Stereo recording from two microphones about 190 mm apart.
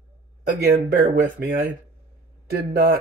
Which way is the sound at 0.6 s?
50° right (ahead or behind).